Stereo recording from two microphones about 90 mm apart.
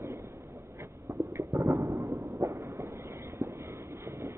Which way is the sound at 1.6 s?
45° right (ahead or behind).